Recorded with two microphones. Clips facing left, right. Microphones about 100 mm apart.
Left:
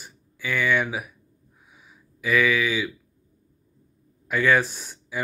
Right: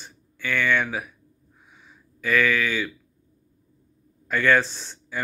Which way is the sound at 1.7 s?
10° left (ahead or behind).